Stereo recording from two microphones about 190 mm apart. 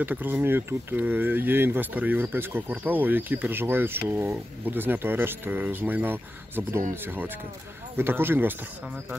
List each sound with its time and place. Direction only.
0.0 s speech: 10° right (ahead or behind)
8.0 s speech: 10° right (ahead or behind)